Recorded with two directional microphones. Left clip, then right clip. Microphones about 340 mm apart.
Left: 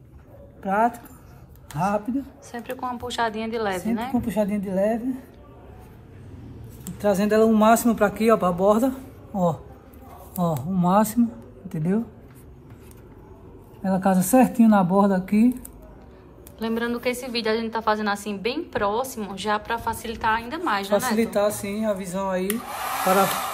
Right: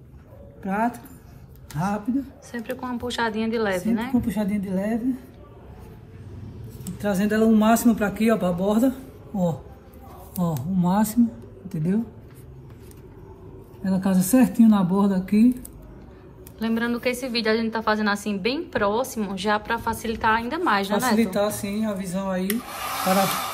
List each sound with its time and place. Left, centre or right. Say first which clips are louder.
0.6 s a woman's voice: left 4 dB; centre
4.3 s speech: left 3 dB; centre
6.8 s a man's voice: left 4 dB; centre
13.8 s speech: left 3 dB; centre
16.5 s a woman's voice: even; centre
21.2 s a woman's voice: left 1 dB; centre
22.5 s a woman's voice: left 1 dB; centre